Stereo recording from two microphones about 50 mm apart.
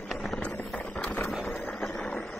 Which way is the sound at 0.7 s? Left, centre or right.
Left.